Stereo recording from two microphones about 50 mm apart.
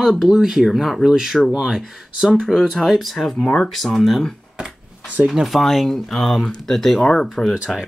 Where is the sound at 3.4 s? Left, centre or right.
Left.